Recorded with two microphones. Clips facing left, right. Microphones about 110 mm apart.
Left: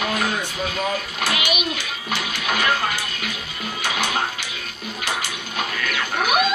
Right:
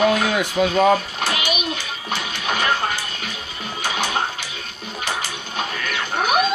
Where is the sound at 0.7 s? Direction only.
35° right (ahead or behind).